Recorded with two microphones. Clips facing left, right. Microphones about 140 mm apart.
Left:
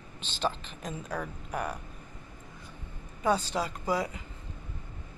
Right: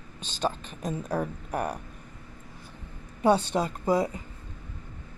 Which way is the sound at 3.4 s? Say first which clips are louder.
Right 4 dB; 60° right (ahead or behind).